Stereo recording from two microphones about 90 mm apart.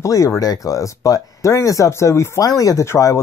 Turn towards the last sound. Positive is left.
turn(degrees=35)  # may be behind; listen again after turning